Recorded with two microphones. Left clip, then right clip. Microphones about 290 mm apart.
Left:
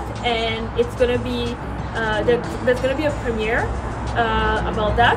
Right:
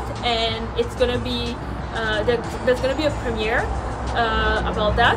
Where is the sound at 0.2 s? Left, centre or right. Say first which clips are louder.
Even; right.